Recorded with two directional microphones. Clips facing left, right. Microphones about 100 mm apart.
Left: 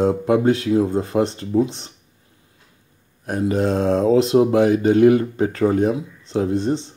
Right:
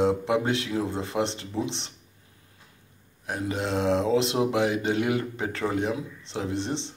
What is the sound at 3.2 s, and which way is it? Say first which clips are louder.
Speech: left 9 dB; 45° left (ahead or behind).